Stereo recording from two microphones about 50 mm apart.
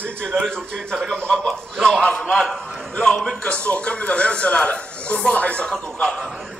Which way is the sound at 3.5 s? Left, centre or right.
Left.